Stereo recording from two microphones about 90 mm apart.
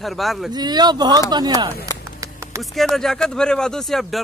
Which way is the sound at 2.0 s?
35° right (ahead or behind).